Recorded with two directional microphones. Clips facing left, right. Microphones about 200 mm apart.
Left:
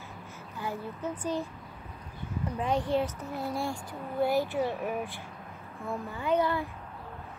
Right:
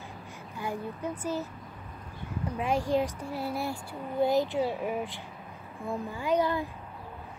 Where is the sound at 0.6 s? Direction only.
15° right (ahead or behind).